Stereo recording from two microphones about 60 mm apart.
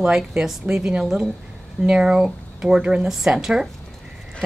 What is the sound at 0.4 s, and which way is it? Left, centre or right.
Speech, centre.